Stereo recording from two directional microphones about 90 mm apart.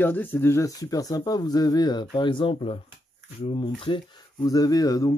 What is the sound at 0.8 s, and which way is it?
Speech, 45° left (ahead or behind).